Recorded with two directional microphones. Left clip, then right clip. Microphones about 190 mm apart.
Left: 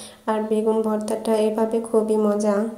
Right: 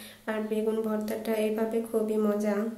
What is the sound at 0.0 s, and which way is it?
A woman's voice, 20° left (ahead or behind).